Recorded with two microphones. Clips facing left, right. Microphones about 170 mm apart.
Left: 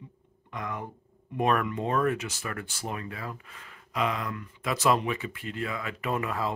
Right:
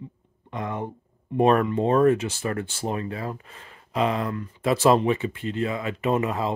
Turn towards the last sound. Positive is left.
turn(degrees=-20)  # may be behind; listen again after turning